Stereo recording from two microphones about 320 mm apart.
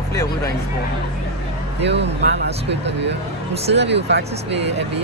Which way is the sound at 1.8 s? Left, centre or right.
Right.